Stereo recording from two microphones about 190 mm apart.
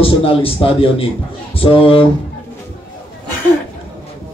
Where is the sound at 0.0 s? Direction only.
30° left (ahead or behind).